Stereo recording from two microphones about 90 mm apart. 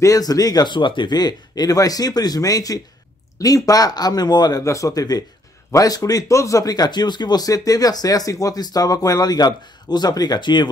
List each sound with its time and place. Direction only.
0.0 s speech: 40° left (ahead or behind)
4.6 s speech: 35° left (ahead or behind); by 10.7 s 55° left (ahead or behind)